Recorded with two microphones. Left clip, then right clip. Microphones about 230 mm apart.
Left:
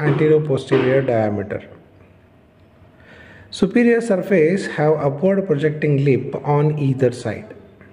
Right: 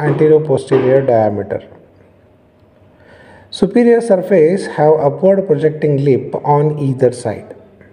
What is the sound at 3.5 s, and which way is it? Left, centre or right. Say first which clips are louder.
Speech: right 5 dB; centre.